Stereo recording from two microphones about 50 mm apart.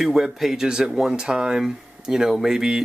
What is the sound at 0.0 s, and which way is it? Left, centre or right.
Speech, centre.